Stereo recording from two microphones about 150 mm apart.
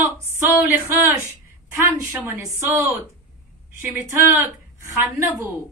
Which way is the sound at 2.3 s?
15° right (ahead or behind).